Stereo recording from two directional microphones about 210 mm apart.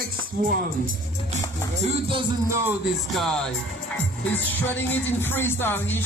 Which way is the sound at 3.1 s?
Centre (ahead or behind).